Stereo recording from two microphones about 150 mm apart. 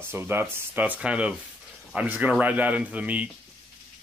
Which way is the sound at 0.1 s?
15° right (ahead or behind).